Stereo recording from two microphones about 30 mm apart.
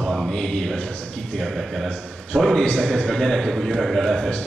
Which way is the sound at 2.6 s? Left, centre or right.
Left.